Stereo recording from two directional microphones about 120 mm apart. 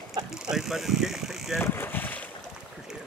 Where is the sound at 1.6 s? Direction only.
20° left (ahead or behind).